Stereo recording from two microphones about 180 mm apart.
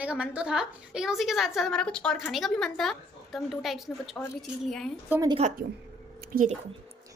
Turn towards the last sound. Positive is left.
turn(degrees=-55)  # may be behind; listen again after turning